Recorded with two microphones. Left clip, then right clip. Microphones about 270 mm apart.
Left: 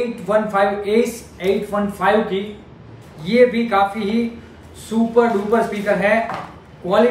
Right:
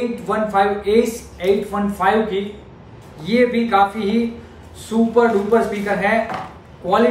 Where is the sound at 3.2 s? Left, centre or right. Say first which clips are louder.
Left 2 dB; centre.